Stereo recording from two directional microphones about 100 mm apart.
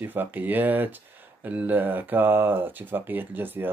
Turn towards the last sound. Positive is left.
turn(degrees=-20)  # may be behind; listen again after turning